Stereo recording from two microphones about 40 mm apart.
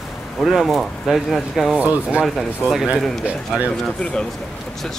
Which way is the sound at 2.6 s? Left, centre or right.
Right.